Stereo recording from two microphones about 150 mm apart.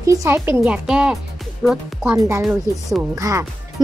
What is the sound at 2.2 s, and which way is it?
Speech, 20° right (ahead or behind).